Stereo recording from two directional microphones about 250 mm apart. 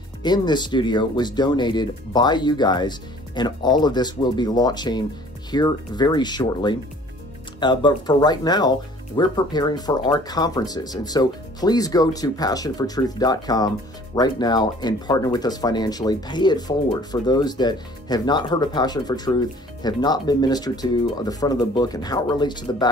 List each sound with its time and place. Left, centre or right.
0.2 s speech: centre